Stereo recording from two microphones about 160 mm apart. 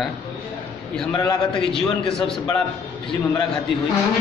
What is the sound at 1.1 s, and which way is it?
Speech, 30° left (ahead or behind).